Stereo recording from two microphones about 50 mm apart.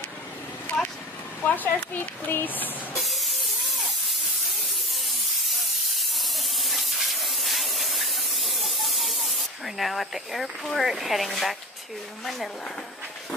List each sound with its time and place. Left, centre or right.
1.4 s speech: left
3.0 s spray: centre
4.9 s steam: centre